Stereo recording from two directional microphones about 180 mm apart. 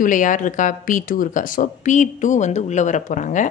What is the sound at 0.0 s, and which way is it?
Speech, 45° left (ahead or behind).